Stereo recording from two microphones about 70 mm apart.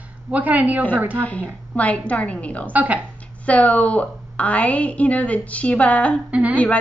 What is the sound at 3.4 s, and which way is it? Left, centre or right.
A woman's voice, left.